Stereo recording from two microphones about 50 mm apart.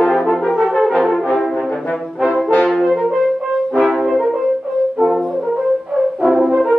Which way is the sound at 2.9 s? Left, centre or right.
Centre.